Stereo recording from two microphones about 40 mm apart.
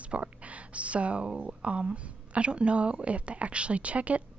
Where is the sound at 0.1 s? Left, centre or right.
Right.